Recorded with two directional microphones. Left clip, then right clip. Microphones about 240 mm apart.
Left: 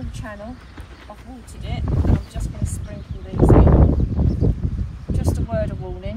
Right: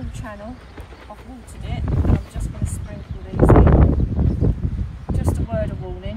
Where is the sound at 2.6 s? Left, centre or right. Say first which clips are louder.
Even; centre.